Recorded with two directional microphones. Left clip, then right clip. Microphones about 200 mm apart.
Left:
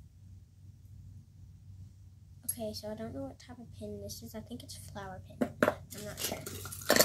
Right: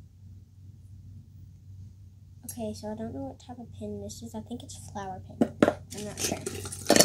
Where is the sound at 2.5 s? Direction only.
Centre (ahead or behind).